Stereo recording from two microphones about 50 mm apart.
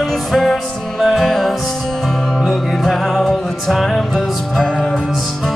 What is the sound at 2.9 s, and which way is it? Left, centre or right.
Music, centre.